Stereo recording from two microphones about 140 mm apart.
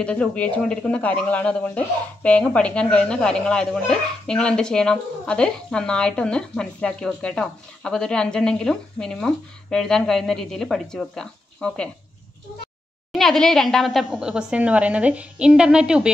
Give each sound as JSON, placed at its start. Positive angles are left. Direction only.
{"t": 0.0, "sound": "speech", "side_deg": 10}
{"t": 13.1, "sound": "a woman's voice", "side_deg": 5}